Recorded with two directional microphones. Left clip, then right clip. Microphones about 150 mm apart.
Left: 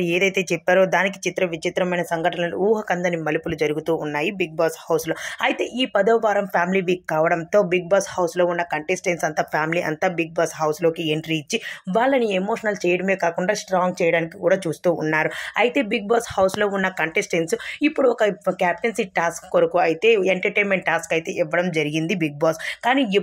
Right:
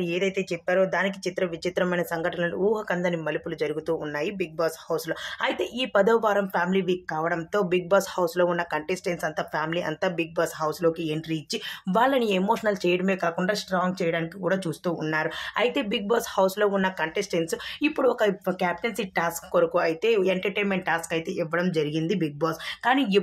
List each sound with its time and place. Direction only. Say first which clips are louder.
0.0 s speech: left 6 dB; 35° left (ahead or behind)
1.0 s speech: left 5 dB; 25° left (ahead or behind)
5.4 s speech: left 5 dB; 15° left (ahead or behind)
6.5 s speech: left 5 dB; 25° left (ahead or behind)
7.3 s speech: left 6 dB; 20° left (ahead or behind)
11.9 s speech: left 3 dB; 10° left (ahead or behind); by 17.6 s 25° left (ahead or behind)
17.7 s speech: left 4 dB; 10° left (ahead or behind); by 22.6 s 30° left (ahead or behind)
22.8 s speech: left 3 dB; 15° left (ahead or behind)